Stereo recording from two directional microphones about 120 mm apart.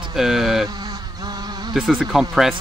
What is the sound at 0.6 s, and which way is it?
Insect, 35° right (ahead or behind).